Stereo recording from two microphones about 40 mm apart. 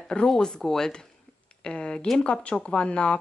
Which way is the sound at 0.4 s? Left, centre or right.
Centre.